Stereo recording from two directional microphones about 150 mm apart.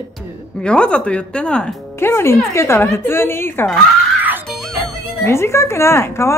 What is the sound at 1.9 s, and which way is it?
A woman's voice, 15° left (ahead or behind).